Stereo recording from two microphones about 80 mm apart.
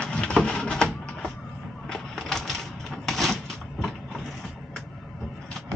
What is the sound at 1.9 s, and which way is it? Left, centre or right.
Typewriter, centre.